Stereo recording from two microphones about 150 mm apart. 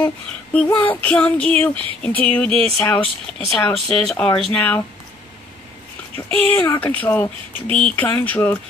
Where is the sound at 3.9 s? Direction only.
5° left (ahead or behind).